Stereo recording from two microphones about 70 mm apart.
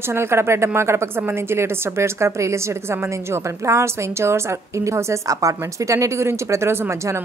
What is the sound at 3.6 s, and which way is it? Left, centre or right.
A woman's voice, right.